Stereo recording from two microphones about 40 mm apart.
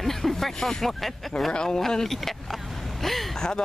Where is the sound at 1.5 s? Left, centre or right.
Left.